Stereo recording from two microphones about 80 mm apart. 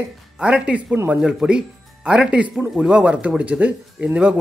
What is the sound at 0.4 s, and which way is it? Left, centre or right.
Speech, centre.